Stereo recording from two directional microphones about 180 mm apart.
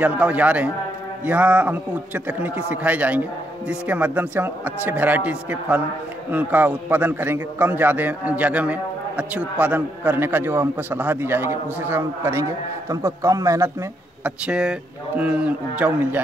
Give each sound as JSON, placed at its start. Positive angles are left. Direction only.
{"t": 0.0, "sound": "a man's voice", "side_deg": -10}
{"t": 14.2, "sound": "speech", "side_deg": -5}